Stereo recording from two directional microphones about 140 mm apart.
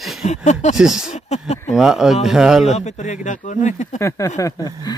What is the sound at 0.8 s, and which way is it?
Speech, 5° right (ahead or behind).